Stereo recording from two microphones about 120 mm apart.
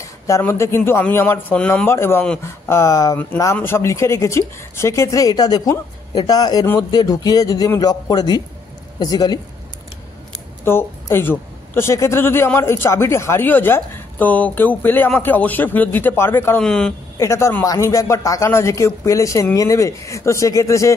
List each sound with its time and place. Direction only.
0.4 s speech: 20° left (ahead or behind)
1.9 s a man's voice: 20° left (ahead or behind)
10.6 s speech: 20° left (ahead or behind)
16.6 s speech: 5° left (ahead or behind)
17.2 s speech: 25° left (ahead or behind)